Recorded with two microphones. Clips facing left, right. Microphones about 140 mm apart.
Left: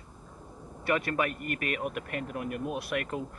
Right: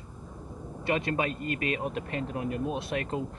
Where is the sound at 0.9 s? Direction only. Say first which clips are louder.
Even; 20° right (ahead or behind).